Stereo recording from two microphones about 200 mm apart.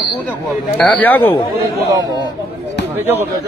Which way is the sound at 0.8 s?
10° left (ahead or behind).